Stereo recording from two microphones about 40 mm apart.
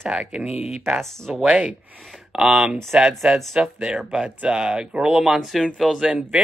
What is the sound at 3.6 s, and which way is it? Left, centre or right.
Speech, right.